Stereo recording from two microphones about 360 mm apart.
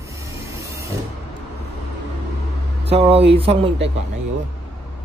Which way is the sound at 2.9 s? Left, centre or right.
Centre.